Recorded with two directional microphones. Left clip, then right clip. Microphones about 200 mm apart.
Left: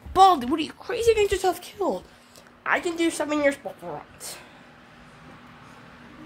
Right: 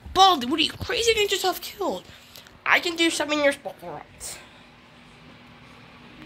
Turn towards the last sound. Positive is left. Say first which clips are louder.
# left 1 dB
turn(degrees=15)  # may be behind; listen again after turning